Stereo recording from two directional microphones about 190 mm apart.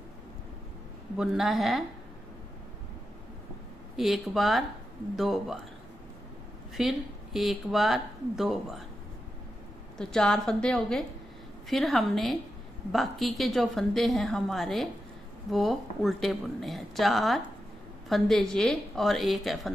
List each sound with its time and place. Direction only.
1.1 s speech: centre (ahead or behind)
3.9 s speech: centre (ahead or behind)
6.8 s speech: centre (ahead or behind)
9.9 s speech: 5° left (ahead or behind)